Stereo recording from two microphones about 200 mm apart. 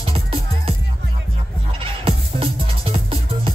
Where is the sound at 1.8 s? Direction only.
25° right (ahead or behind).